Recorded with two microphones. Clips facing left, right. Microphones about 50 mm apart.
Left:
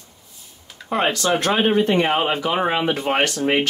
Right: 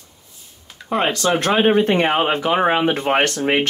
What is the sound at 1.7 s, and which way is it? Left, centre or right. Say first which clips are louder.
Speech: right 2 dB; right.